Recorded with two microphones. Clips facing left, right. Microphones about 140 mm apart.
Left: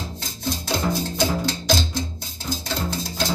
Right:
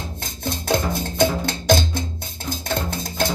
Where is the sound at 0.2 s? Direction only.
55° right (ahead or behind).